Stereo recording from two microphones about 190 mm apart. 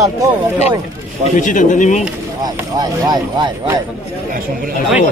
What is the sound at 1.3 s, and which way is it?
Speech, 40° left (ahead or behind).